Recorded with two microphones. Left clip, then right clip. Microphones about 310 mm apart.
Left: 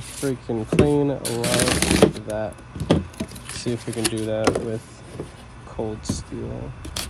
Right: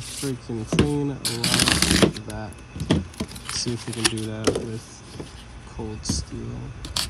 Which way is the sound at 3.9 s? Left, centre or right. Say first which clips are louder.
Left 4 dB; centre.